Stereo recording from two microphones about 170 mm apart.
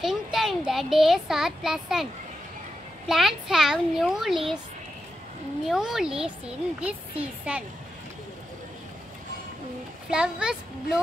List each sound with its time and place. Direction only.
0.0 s speech: centre (ahead or behind)
3.1 s a child's voice: centre (ahead or behind)
5.7 s a child's voice: 5° right (ahead or behind)
10.0 s a child's voice: 5° right (ahead or behind)